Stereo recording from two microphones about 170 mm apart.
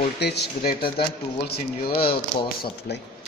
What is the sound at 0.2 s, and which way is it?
A man's voice, 75° left (ahead or behind).